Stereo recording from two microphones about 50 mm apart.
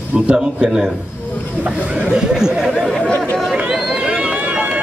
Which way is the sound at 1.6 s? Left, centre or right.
Right.